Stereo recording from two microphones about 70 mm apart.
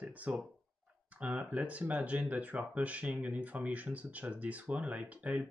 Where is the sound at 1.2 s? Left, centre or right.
Right.